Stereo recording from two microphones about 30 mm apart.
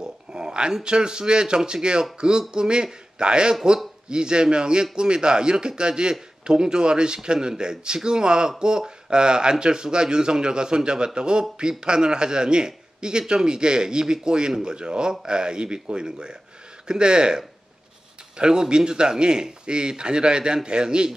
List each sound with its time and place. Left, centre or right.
0.0 s a sound: right
0.8 s speech: right
18.4 s speech: right